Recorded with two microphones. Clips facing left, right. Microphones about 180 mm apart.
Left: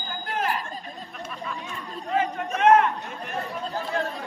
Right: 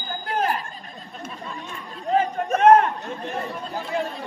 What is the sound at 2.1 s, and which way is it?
Chatter, 35° right (ahead or behind).